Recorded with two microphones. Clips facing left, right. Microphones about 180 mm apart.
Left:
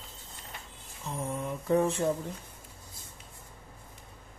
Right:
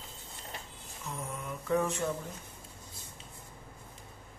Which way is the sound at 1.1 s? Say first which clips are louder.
Left 6 dB; 30° left (ahead or behind).